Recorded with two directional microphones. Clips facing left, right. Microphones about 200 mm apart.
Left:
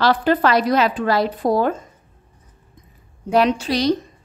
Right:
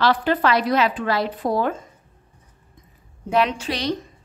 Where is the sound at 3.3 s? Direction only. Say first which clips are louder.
Left 4 dB; 40° left (ahead or behind).